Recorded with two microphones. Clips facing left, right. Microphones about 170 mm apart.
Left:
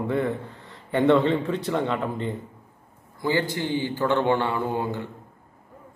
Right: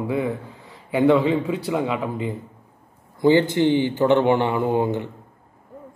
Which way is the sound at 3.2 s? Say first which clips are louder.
Right 9 dB; 20° right (ahead or behind).